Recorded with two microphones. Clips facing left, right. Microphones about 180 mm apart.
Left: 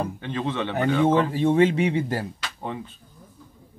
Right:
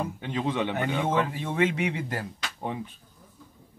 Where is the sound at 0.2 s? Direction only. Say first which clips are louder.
Left 1 dB; 15° right (ahead or behind).